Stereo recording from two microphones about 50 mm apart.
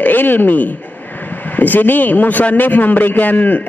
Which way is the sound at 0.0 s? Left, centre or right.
Left.